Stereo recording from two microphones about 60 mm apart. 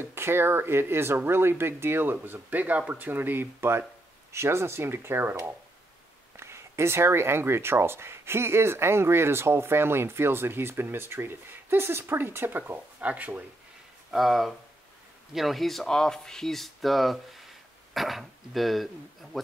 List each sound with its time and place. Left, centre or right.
0.0 s speech: right
6.3 s speech: right
14.1 s speech: centre